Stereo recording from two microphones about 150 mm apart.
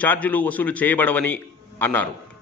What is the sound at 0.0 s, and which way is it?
A man's voice, 10° left (ahead or behind).